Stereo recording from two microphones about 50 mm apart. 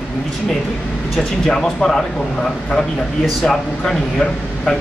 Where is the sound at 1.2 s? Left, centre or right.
Centre.